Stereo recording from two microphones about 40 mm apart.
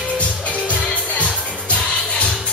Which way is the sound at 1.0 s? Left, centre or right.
Left.